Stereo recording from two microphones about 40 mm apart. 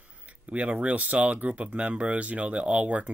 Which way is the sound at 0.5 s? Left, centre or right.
Right.